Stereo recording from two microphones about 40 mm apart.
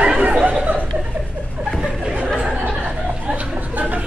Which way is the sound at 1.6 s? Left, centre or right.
Right.